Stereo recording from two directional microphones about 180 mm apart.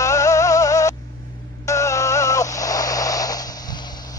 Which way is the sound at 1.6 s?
15° left (ahead or behind).